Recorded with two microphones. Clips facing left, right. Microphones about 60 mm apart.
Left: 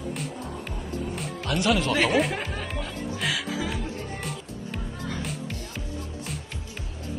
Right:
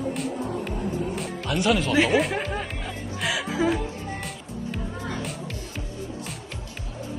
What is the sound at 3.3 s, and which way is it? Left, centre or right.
Music, right.